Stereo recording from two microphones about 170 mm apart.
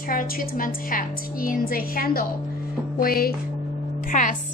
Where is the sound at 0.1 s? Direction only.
55° left (ahead or behind).